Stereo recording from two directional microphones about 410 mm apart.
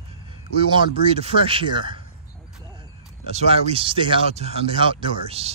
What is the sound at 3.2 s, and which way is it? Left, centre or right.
Speech, centre.